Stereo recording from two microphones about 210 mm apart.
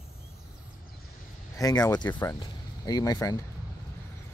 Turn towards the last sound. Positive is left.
turn(degrees=15)  # may be behind; listen again after turning